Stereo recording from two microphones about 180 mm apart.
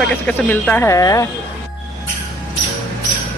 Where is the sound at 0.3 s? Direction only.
10° left (ahead or behind).